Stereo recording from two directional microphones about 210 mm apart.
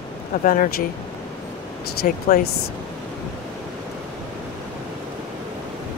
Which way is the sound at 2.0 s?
40° left (ahead or behind).